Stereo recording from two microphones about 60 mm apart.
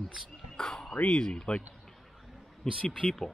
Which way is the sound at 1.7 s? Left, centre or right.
Centre.